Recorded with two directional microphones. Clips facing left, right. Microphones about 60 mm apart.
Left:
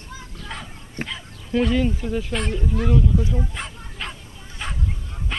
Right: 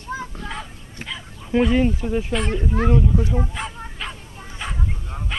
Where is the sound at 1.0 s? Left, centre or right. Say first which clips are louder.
Left 3 dB; left.